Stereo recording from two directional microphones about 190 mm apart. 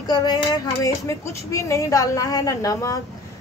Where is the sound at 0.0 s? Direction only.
20° left (ahead or behind).